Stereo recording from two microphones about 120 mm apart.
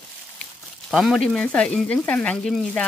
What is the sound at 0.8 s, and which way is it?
Speech, centre (ahead or behind).